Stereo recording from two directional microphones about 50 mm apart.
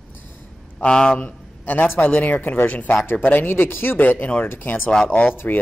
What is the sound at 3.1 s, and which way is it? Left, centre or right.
Speech, left.